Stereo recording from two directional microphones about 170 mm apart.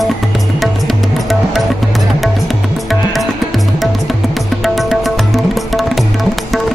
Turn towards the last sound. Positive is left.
turn(degrees=0)  # may be behind; listen again after turning